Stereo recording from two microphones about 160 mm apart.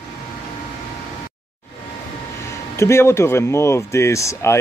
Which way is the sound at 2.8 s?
15° left (ahead or behind).